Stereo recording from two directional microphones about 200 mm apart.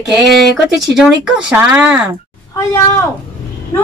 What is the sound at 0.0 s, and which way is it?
Speech, centre (ahead or behind).